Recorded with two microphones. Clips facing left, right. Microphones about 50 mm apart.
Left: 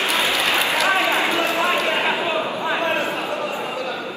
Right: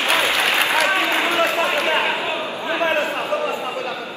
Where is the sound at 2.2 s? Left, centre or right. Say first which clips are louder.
Left 2 dB; left.